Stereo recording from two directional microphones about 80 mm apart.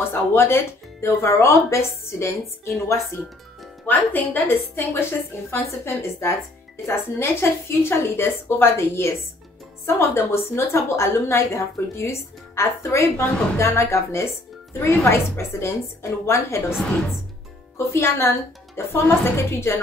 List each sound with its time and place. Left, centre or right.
0.1 s a woman's voice: left
3.8 s a woman's voice: left
17.7 s a woman's voice: left